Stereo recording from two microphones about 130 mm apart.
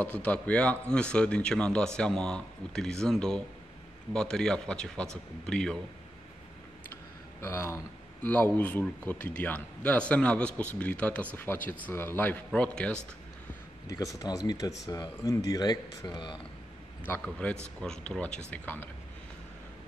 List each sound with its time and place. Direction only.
0.0 s speech: 10° left (ahead or behind)
7.3 s speech: 20° left (ahead or behind)
14.1 s speech: 30° left (ahead or behind)
17.0 s speech: 15° left (ahead or behind)